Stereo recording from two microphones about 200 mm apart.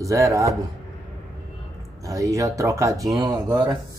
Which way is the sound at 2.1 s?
15° right (ahead or behind).